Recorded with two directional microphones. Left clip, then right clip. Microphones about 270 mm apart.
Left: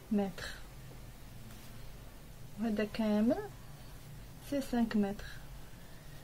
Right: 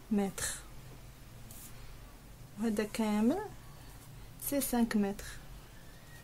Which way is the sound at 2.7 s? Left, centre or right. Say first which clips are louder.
Left 1 dB; right.